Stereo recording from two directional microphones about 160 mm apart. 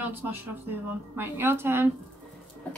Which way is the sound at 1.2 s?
15° right (ahead or behind).